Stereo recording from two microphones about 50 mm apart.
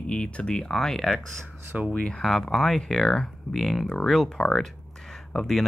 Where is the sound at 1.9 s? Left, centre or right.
Left.